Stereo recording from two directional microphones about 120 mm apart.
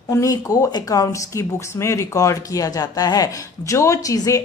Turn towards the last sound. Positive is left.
turn(degrees=30)  # may be behind; listen again after turning